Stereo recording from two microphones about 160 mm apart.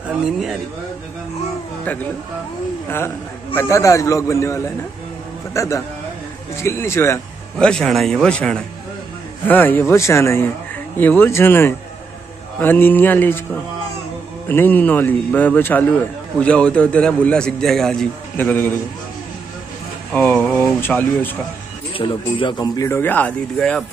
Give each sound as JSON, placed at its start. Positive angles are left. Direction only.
{"t": 3.5, "sound": "a man's voice", "side_deg": 20}
{"t": 7.5, "sound": "a man's voice", "side_deg": 5}
{"t": 14.5, "sound": "a man's voice", "side_deg": 10}
{"t": 20.1, "sound": "speech", "side_deg": 5}
{"t": 21.9, "sound": "a man's voice", "side_deg": 30}